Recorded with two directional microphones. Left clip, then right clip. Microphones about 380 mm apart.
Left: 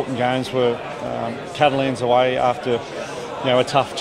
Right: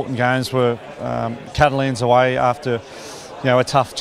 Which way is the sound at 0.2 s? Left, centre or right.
Right.